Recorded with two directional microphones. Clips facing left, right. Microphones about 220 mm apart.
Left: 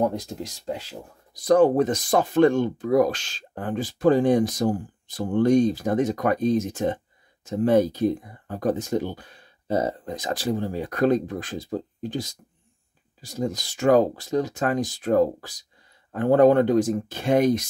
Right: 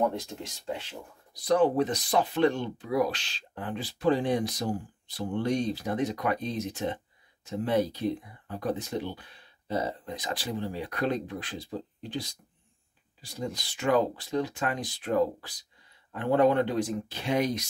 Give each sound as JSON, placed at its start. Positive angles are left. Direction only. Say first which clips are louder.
{"t": 0.0, "sound": "speech", "louder": "left 4 dB", "side_deg": 40}